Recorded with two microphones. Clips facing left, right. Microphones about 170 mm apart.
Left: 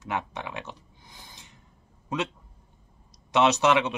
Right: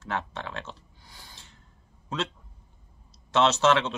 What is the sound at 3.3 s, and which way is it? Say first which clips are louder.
Speech: left 1 dB; 15° left (ahead or behind).